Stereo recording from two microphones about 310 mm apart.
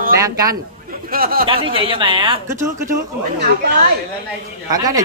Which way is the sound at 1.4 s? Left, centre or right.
Centre.